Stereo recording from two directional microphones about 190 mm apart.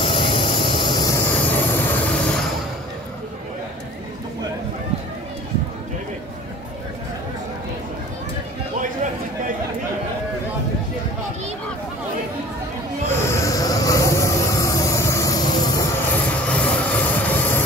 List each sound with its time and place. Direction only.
0.0 s a sound: 25° left (ahead or behind)
1.3 s train: 10° left (ahead or behind)
13.1 s train: 15° left (ahead or behind)